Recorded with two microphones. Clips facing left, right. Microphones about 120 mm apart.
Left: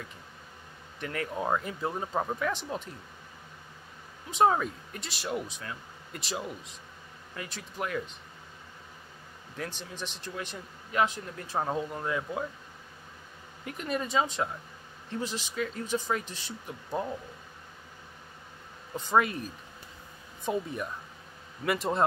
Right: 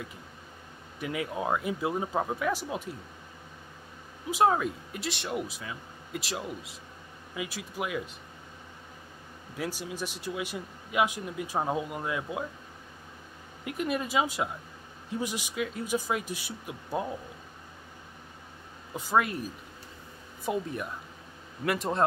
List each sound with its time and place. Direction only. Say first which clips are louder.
0.9 s speech: right 1 dB; 10° right (ahead or behind)
4.3 s speech: even; 5° right (ahead or behind)
9.6 s speech: right 4 dB; 10° right (ahead or behind)
13.7 s speech: right 2 dB; 5° right (ahead or behind)
18.9 s speech: left 1 dB; 5° right (ahead or behind)